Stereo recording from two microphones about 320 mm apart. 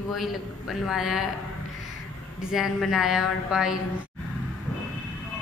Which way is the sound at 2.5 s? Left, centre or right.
Centre.